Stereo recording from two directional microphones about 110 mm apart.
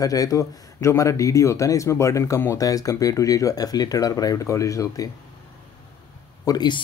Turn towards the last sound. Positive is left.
turn(degrees=40)  # may be behind; listen again after turning